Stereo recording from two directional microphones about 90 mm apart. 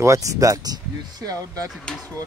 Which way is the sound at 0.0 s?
35° right (ahead or behind).